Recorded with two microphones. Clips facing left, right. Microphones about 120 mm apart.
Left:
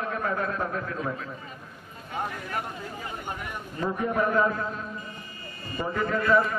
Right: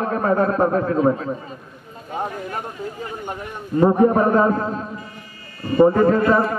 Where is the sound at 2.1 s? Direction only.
30° right (ahead or behind).